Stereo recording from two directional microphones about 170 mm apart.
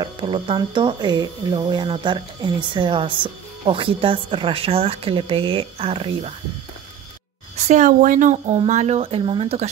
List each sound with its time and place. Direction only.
0.0 s speech: 30° right (ahead or behind)
7.5 s speech: 40° right (ahead or behind)